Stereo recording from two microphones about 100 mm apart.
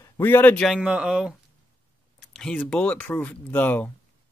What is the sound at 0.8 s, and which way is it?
Speech, 10° right (ahead or behind).